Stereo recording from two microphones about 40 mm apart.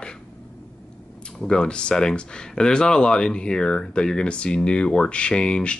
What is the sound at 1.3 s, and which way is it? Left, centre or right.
Speech, centre.